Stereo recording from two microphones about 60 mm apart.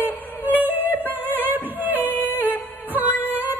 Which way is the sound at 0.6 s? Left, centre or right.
Right.